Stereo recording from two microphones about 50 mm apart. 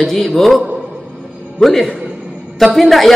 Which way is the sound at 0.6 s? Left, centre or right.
Right.